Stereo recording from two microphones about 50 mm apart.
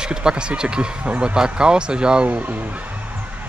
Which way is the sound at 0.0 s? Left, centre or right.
Centre.